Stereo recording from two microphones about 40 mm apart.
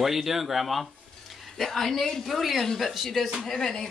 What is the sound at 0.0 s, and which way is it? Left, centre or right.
Speech, centre.